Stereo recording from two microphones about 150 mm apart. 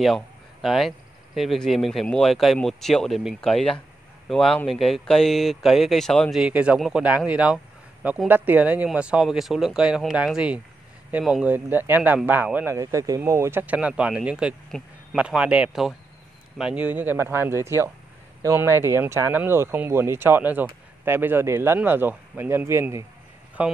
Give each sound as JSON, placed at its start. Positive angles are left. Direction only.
{"t": 0.0, "sound": "speech", "side_deg": 0}
{"t": 6.4, "sound": "speech", "side_deg": -10}
{"t": 12.7, "sound": "speech", "side_deg": -20}
{"t": 14.7, "sound": "speech", "side_deg": 5}
{"t": 15.1, "sound": "speech", "side_deg": -5}